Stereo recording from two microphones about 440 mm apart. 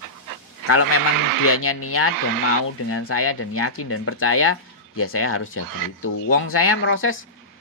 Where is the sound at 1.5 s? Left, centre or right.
Left.